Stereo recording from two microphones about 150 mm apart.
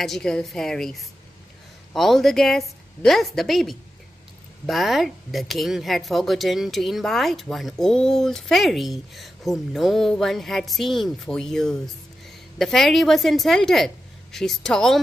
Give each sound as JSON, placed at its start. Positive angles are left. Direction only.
{"t": 0.0, "sound": "speech", "side_deg": 0}
{"t": 2.0, "sound": "speech", "side_deg": 0}